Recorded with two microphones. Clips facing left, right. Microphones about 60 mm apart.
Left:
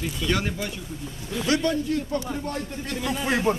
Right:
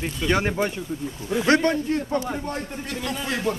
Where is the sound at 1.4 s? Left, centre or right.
Right.